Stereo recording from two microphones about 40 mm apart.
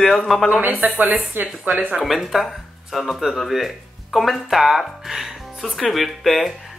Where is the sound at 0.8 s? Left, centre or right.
Right.